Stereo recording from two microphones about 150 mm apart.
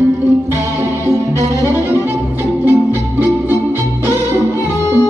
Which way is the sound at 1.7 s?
15° right (ahead or behind).